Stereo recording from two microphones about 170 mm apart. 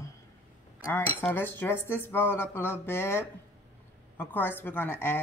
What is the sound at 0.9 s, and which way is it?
A woman's voice, 10° left (ahead or behind).